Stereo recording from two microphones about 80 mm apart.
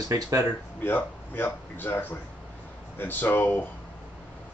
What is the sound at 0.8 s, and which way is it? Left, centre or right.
Speech, left.